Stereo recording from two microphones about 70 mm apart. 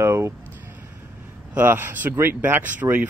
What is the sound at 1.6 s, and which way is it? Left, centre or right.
Speech, right.